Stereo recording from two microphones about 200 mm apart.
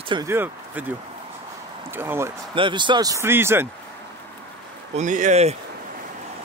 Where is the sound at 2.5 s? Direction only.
25° right (ahead or behind).